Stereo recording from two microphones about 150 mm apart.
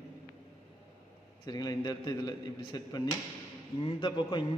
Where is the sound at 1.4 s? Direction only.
25° left (ahead or behind).